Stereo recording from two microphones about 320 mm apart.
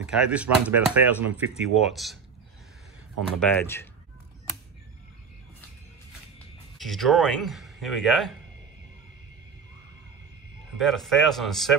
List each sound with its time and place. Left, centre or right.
0.0 s speech: centre
3.3 s speech: centre
6.8 s speech: centre
10.8 s speech: centre